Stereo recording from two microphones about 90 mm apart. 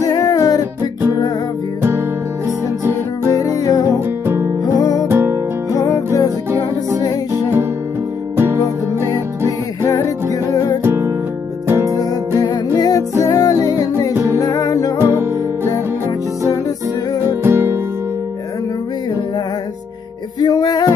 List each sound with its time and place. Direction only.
0.0 s music: 40° left (ahead or behind)
3.3 s music: 40° left (ahead or behind)
5.1 s music: 25° right (ahead or behind)
5.7 s music: 40° left (ahead or behind)
8.4 s music: 30° right (ahead or behind)
9.8 s music: 40° left (ahead or behind)
10.8 s music: 25° right (ahead or behind)
12.7 s music: 45° left (ahead or behind)
14.1 s music: 30° right (ahead or behind)
14.4 s music: 40° left (ahead or behind)
17.4 s music: 25° right (ahead or behind)
20.3 s music: 50° left (ahead or behind)